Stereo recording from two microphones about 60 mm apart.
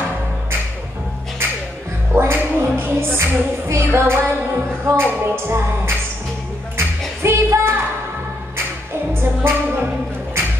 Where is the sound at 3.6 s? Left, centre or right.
Right.